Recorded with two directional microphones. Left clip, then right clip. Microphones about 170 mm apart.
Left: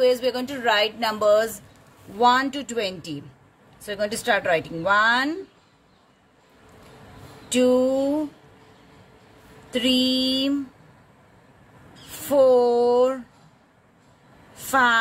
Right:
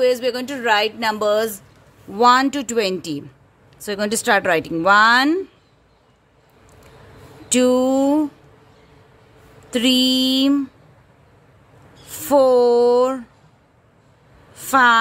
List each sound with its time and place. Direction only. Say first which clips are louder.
0.0 s a woman's voice: right 2 dB; 40° right (ahead or behind)
7.5 s speech: right 3 dB; 50° right (ahead or behind)
9.7 s speech: right 4 dB; 50° right (ahead or behind)
12.3 s speech: right 3 dB; 45° right (ahead or behind)
14.7 s a woman's voice: right 5 dB; 40° right (ahead or behind)